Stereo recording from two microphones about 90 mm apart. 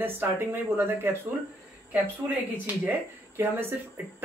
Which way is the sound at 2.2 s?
20° right (ahead or behind).